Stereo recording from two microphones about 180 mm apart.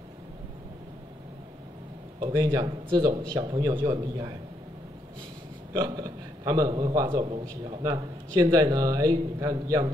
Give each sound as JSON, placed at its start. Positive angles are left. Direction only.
{"t": 2.1, "sound": "a man's voice", "side_deg": -25}
{"t": 5.7, "sound": "a man's voice", "side_deg": -20}